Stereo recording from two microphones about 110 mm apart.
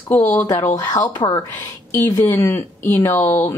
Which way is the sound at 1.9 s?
25° left (ahead or behind).